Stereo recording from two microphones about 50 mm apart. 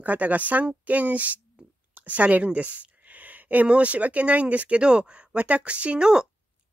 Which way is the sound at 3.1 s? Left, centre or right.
Right.